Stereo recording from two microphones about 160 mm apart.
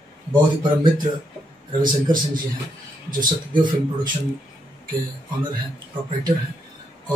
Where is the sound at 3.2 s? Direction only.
30° right (ahead or behind).